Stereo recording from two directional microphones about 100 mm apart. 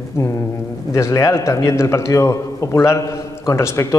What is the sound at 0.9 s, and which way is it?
A man's voice, 30° left (ahead or behind).